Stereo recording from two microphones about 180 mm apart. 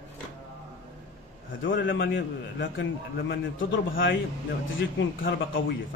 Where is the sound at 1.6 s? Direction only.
90° left.